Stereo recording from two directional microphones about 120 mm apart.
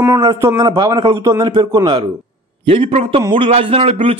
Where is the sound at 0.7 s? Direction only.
40° right (ahead or behind).